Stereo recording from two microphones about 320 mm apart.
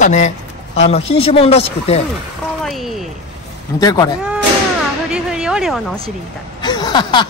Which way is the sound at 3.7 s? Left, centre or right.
Centre.